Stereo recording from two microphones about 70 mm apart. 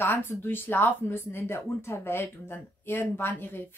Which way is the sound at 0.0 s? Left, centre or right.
Left.